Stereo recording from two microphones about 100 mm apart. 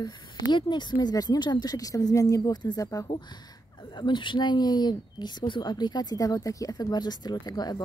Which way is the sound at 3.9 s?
50° left (ahead or behind).